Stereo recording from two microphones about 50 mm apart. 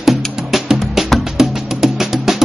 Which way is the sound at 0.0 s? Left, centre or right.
Centre.